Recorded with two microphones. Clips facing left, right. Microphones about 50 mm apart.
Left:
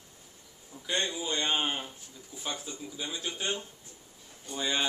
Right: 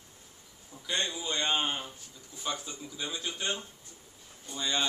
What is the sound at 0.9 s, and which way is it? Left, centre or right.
Speech, centre.